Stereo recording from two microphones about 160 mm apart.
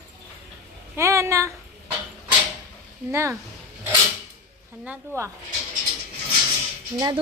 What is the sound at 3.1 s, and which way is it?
Speech, 15° right (ahead or behind).